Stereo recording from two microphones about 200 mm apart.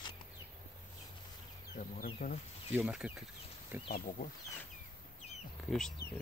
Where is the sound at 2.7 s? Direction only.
5° right (ahead or behind).